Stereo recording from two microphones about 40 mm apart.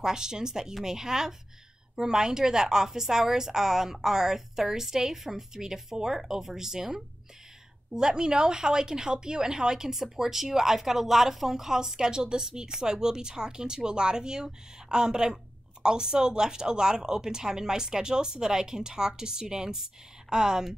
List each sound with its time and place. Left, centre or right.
0.0 s speech: centre